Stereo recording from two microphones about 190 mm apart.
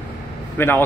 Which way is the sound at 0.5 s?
10° left (ahead or behind).